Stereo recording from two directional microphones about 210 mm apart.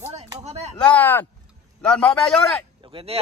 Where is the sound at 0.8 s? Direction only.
5° left (ahead or behind).